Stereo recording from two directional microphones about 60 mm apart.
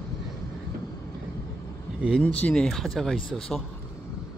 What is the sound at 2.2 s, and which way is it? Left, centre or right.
Speech, centre.